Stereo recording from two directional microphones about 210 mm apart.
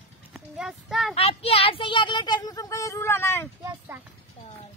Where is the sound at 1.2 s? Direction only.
30° left (ahead or behind); by 3.5 s 10° left (ahead or behind).